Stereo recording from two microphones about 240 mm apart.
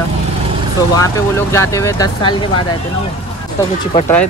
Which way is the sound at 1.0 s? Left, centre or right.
Centre.